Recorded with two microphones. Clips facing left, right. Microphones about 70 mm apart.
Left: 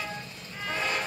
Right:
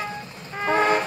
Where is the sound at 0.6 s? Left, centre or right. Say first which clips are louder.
Right 11 dB; right.